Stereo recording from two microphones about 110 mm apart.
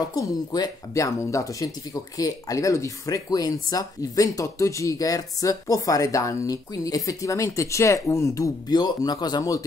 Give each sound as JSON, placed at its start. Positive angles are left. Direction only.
{"t": 0.1, "sound": "speech", "side_deg": 35}